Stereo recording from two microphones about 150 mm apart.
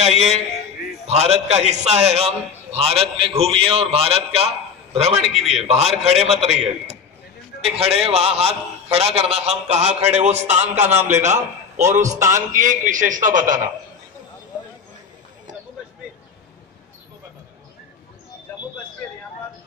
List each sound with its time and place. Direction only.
0.0 s a man's voice: 45° right (ahead or behind)
5.2 s a man's voice: centre (ahead or behind)
5.7 s a man's voice: 45° right (ahead or behind)
11.0 s a man's voice: 20° right (ahead or behind)
12.4 s a man's voice: 60° right (ahead or behind)